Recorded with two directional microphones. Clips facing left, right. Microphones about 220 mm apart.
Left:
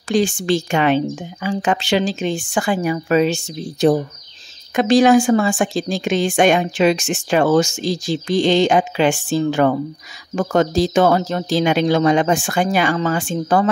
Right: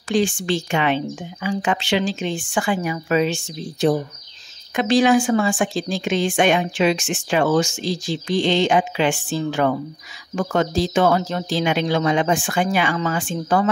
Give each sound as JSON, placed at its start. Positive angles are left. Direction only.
{"t": 0.1, "sound": "speech", "side_deg": 40}
{"t": 4.7, "sound": "a woman's voice", "side_deg": 45}